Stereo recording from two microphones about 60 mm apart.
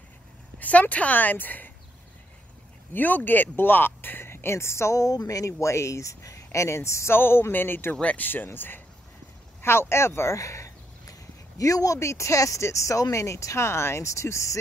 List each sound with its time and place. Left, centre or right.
0.6 s speech: left
2.9 s speech: left
7.2 s speech: left
7.9 s speech: left
8.5 s speech: left